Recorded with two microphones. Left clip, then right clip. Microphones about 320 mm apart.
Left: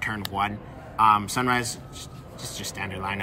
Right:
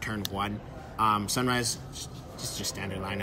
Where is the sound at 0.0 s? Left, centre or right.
Centre.